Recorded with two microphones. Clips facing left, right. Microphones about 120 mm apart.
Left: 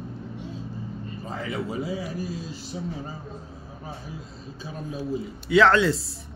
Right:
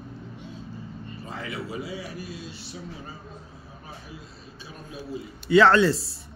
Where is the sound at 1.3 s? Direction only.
40° left (ahead or behind).